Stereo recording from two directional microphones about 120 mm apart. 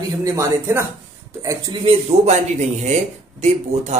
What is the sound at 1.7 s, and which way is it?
Speech, 60° right (ahead or behind).